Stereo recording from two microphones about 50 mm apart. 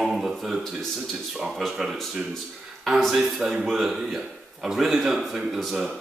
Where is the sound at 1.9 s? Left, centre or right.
Centre.